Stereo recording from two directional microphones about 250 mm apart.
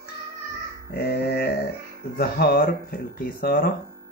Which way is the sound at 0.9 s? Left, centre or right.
Left.